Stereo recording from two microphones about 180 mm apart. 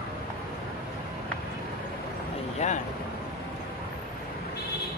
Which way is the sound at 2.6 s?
40° left (ahead or behind).